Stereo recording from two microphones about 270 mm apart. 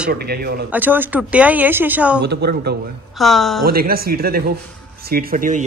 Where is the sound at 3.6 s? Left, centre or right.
Right.